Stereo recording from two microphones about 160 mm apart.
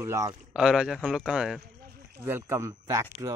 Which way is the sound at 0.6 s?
5° right (ahead or behind).